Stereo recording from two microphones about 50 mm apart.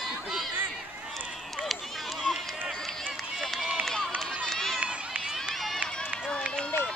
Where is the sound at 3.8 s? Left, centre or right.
Centre.